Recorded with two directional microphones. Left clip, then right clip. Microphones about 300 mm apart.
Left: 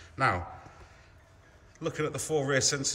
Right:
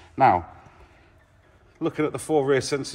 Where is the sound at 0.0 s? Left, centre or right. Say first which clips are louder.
Right 10 dB; centre.